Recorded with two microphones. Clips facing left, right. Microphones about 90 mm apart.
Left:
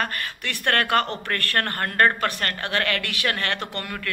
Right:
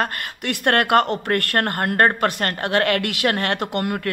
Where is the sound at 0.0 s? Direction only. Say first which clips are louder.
Right 3 dB; 20° right (ahead or behind).